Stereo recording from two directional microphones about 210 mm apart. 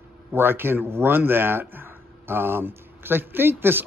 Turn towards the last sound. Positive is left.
turn(degrees=-10)  # may be behind; listen again after turning